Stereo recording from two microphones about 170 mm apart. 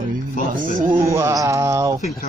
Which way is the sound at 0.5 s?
50° right (ahead or behind).